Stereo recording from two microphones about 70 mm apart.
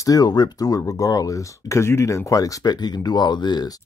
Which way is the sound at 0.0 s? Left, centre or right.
Left.